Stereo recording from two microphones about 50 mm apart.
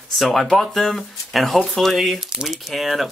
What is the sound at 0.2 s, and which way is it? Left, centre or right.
Speech, centre.